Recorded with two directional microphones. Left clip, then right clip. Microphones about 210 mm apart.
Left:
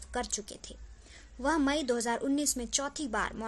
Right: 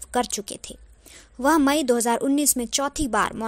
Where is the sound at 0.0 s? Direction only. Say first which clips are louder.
Right 11 dB; 40° right (ahead or behind).